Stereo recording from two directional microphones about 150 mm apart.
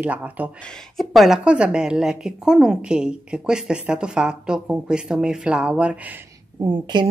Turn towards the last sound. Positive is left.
turn(degrees=-30)  # may be behind; listen again after turning